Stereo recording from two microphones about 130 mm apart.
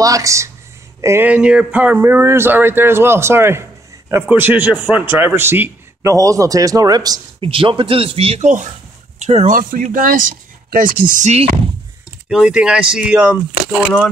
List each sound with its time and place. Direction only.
0.0 s a man's voice: 25° right (ahead or behind)
7.3 s speech: 45° right (ahead or behind)
8.4 s speech: 70° right (ahead or behind)
12.3 s a man's voice: 5° right (ahead or behind)